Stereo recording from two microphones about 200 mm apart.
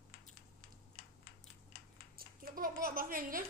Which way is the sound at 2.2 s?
45° right (ahead or behind).